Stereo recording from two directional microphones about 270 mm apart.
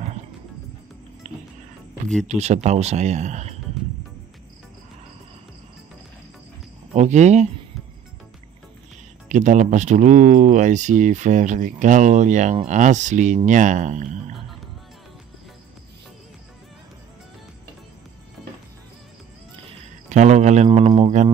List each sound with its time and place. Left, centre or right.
1.2 s music: right
2.2 s speech: right
6.9 s speech: right
9.3 s speech: right
20.1 s speech: right